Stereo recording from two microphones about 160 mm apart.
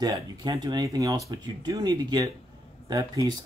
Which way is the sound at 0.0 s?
25° right (ahead or behind).